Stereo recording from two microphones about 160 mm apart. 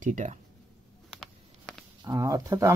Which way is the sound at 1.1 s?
5° left (ahead or behind).